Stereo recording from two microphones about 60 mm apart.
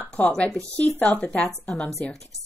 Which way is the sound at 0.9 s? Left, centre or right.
Left.